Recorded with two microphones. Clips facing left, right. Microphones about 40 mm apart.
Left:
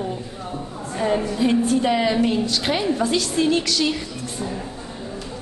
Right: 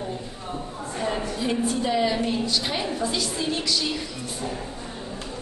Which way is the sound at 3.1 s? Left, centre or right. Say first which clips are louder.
Left 7 dB; left.